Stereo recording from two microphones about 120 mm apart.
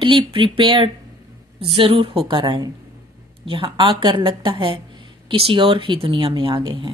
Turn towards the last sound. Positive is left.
turn(degrees=-45)  # may be behind; listen again after turning